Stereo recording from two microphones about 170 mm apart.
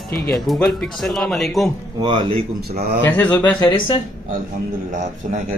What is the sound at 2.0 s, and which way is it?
Speech, 30° right (ahead or behind).